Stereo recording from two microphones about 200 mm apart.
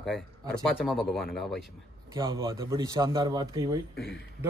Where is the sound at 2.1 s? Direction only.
20° right (ahead or behind).